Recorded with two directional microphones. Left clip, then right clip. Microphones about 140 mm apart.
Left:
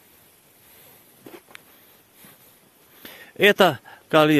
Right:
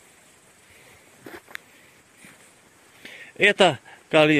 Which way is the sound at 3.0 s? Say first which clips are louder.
Left 2 dB; 50° left (ahead or behind).